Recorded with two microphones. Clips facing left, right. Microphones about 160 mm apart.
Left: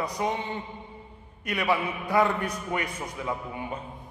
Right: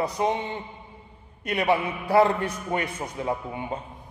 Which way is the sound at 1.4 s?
25° right (ahead or behind).